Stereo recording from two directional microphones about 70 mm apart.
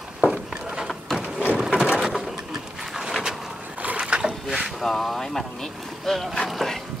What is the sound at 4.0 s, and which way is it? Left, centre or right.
Boat, centre.